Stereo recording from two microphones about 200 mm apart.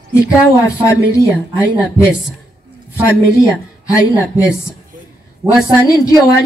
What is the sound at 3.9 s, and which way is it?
Speech, 15° left (ahead or behind).